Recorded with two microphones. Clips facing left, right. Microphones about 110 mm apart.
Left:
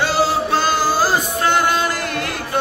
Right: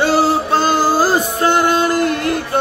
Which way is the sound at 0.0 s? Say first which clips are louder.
Right 3 dB; 40° right (ahead or behind).